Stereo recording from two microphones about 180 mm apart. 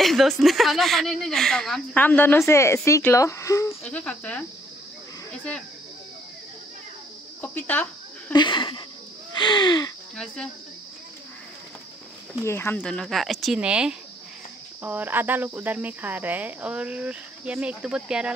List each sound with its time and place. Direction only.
0.0 s speech: centre (ahead or behind)
7.4 s speech: 10° left (ahead or behind)
8.3 s speech: 25° left (ahead or behind)
10.1 s speech: 5° left (ahead or behind)
12.4 s speech: 15° left (ahead or behind); by 18.3 s 5° right (ahead or behind)